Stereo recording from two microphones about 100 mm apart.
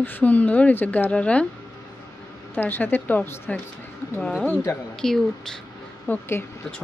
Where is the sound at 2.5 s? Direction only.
20° left (ahead or behind).